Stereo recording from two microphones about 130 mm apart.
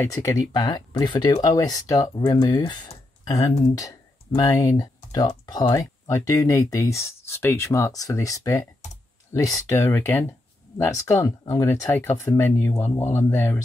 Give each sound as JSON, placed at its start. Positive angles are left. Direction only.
{"t": 0.0, "sound": "speech", "side_deg": 25}